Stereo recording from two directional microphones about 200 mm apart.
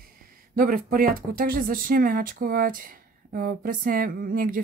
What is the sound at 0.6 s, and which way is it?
Speech, 45° right (ahead or behind).